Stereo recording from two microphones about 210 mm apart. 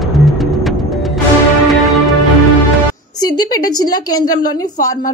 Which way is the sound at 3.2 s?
20° left (ahead or behind).